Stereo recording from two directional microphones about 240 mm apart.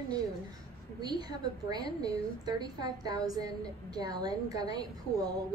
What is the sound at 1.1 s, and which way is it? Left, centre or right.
A woman's voice, centre.